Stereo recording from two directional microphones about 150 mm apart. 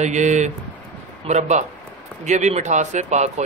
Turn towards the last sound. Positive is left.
turn(degrees=-50)  # may be behind; listen again after turning